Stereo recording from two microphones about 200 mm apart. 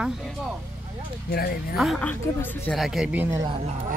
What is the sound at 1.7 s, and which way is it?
Speech, centre (ahead or behind).